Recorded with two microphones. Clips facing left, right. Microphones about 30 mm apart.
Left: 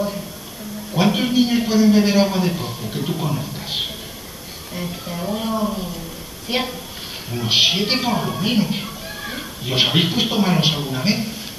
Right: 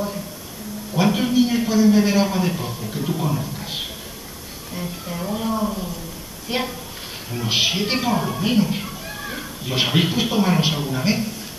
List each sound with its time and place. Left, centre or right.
0.9 s a man's voice: centre
3.5 s a sound: left
4.7 s speech: centre
6.5 s a woman's voice: left